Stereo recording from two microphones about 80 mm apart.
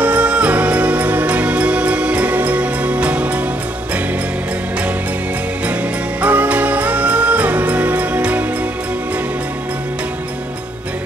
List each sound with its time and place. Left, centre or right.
0.0 s music: centre
6.2 s music: centre